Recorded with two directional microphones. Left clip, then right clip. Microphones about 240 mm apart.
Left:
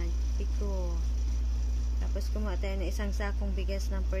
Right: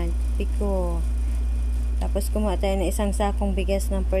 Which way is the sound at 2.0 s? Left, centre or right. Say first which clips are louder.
Right 13 dB; centre.